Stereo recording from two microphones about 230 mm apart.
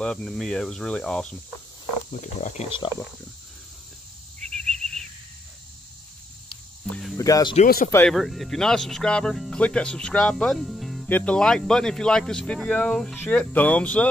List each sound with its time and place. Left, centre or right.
0.0 s speech: centre
2.4 s speech: left
4.4 s bird: centre
6.8 s cricket: centre
7.2 s speech: centre
7.5 s speech: left
7.9 s speech: centre